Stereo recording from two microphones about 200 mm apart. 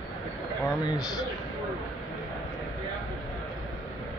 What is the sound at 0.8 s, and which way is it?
Speech, 20° left (ahead or behind).